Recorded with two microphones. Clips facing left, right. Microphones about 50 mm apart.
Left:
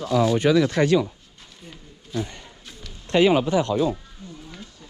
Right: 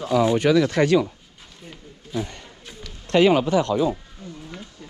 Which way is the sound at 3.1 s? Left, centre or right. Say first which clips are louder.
Right 1 dB; right.